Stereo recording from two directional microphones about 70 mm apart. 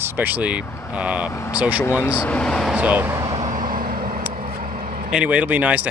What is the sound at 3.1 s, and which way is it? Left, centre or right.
Vehicle, right.